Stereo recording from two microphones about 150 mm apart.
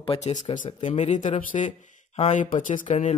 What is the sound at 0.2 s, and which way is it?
Speech, 50° left (ahead or behind).